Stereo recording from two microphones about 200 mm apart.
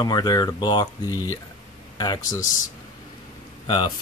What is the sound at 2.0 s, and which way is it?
Speech, 20° left (ahead or behind).